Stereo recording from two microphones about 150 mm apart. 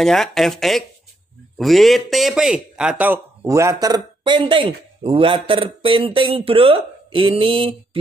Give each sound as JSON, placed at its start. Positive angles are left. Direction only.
{"t": 0.0, "sound": "a man's voice", "side_deg": 0}
{"t": 3.4, "sound": "speech", "side_deg": -20}